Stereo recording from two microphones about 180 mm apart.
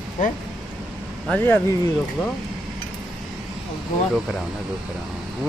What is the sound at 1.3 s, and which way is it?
Speech, 10° left (ahead or behind).